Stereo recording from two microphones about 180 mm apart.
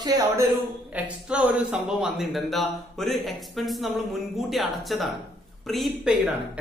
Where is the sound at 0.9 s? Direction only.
5° right (ahead or behind).